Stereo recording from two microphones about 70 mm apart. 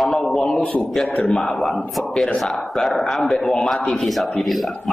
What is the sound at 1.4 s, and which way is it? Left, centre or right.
A man's voice, centre.